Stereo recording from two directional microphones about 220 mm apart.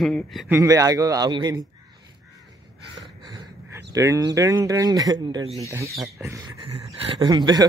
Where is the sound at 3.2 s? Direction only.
15° right (ahead or behind).